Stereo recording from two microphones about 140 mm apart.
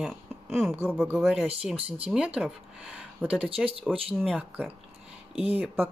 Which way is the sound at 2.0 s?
10° right (ahead or behind).